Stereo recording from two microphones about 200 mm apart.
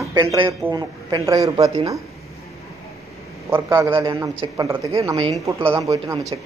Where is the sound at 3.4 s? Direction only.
15° right (ahead or behind).